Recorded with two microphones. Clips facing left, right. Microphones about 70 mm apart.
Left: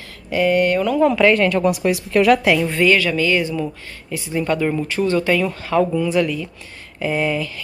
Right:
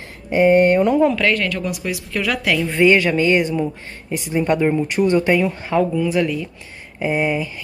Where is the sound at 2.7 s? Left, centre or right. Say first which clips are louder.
Right 2 dB; right.